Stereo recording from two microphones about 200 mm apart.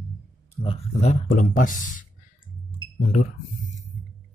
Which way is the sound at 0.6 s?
35° left (ahead or behind).